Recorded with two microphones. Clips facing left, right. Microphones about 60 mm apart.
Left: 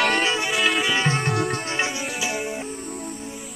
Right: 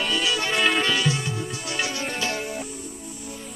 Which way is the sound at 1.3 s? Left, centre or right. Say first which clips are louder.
Left 7 dB; left.